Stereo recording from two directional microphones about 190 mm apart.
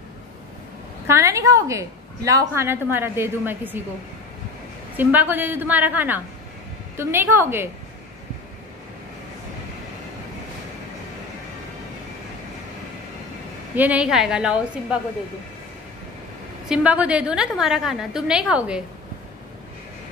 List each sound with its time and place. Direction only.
1.0 s a woman's voice: 15° right (ahead or behind)
4.9 s a woman's voice: 10° right (ahead or behind)
13.7 s a woman's voice: 5° right (ahead or behind)
16.6 s a woman's voice: 5° right (ahead or behind)